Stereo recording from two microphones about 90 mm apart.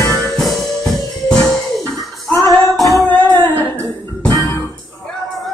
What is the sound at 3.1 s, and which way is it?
Music, 20° left (ahead or behind).